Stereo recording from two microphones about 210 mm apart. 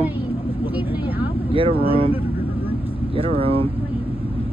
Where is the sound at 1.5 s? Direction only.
25° right (ahead or behind).